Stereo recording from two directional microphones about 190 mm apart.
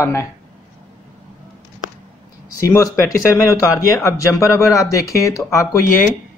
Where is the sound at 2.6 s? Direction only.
15° left (ahead or behind).